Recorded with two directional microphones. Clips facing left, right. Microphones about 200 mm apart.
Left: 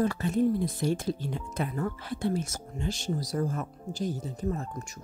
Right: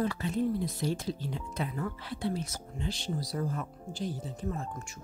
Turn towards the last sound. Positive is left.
turn(degrees=40)  # may be behind; listen again after turning